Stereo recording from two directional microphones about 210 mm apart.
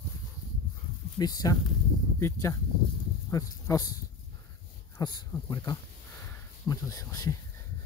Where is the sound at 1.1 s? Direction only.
15° left (ahead or behind).